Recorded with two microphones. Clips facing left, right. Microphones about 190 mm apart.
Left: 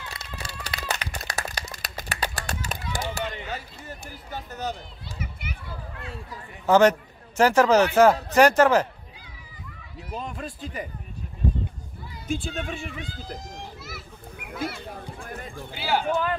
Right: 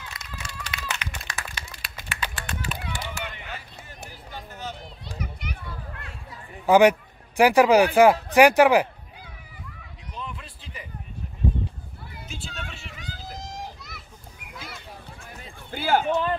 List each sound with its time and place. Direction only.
0.1 s a sound: 35° left (ahead or behind)
5.2 s children playing: 5° left (ahead or behind)
6.6 s a man's voice: 15° right (ahead or behind)
10.1 s a sound: 45° left (ahead or behind)
12.3 s speech: 50° left (ahead or behind)
14.8 s run: 55° left (ahead or behind)
15.7 s a man's voice: 50° right (ahead or behind)